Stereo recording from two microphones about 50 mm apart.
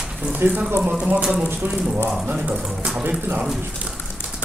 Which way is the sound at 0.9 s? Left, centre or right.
Centre.